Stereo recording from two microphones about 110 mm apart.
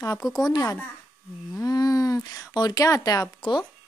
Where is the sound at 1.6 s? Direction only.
35° left (ahead or behind).